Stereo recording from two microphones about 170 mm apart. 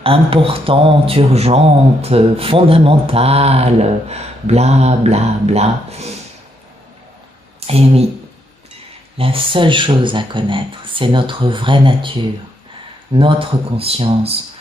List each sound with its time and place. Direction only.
0.0 s speech: 35° right (ahead or behind)
7.6 s speech: 35° right (ahead or behind)
9.1 s speech: 30° right (ahead or behind)